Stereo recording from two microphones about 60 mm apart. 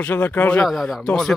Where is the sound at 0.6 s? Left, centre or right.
Centre.